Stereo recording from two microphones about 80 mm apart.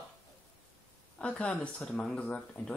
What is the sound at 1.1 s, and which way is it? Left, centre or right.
Speech, centre.